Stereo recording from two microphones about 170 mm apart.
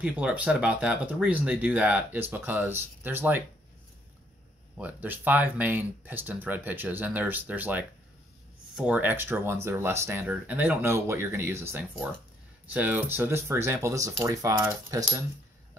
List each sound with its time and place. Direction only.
0.0 s speech: 10° right (ahead or behind)
4.7 s speech: 10° right (ahead or behind)